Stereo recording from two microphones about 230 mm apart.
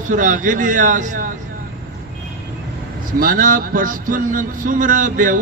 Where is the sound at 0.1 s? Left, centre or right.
Right.